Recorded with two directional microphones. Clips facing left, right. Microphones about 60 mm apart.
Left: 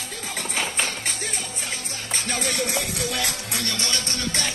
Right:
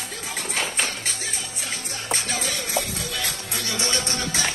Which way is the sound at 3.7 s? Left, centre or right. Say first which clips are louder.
Right 2 dB; right.